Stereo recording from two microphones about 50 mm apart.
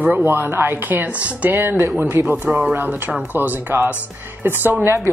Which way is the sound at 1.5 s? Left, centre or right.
Right.